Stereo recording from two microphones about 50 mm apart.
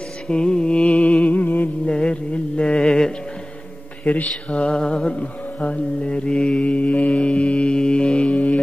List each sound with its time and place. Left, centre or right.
0.3 s mantra: centre; by 1.7 s left
1.9 s a sound: left
4.0 s mantra: left